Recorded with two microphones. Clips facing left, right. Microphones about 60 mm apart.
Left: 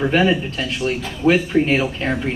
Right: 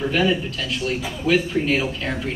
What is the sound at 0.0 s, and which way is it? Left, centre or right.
A man's voice, left.